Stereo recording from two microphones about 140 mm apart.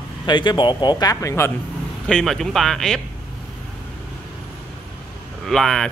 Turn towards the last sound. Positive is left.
turn(degrees=5)  # may be behind; listen again after turning